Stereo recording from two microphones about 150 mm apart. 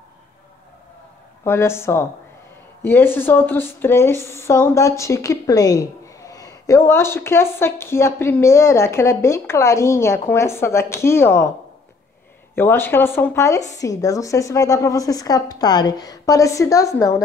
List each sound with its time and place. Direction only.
1.4 s speech: 15° left (ahead or behind)
12.5 s a woman's voice: 15° left (ahead or behind)